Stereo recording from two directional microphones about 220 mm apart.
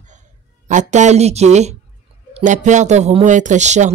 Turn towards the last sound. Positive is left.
turn(degrees=-35)  # may be behind; listen again after turning